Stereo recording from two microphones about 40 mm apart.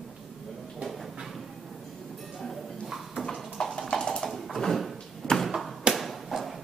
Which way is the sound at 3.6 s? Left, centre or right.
Centre.